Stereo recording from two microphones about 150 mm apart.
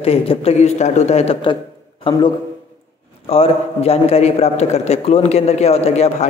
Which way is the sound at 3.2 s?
40° left (ahead or behind).